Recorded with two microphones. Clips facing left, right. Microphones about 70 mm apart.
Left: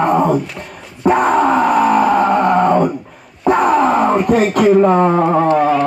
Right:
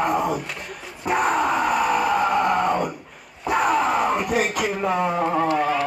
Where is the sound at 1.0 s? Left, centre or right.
Left.